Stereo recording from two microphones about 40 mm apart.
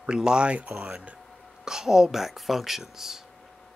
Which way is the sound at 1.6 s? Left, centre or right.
Centre.